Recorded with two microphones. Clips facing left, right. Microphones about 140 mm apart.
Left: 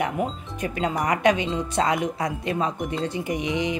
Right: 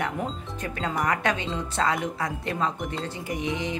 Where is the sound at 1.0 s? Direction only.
15° left (ahead or behind).